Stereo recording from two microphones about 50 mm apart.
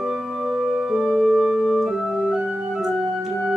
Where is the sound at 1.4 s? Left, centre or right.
Centre.